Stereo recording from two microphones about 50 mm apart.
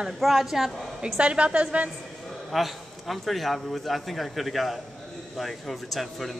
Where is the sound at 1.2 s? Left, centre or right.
Right.